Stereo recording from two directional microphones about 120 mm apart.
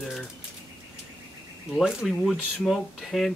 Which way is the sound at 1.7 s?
Centre (ahead or behind).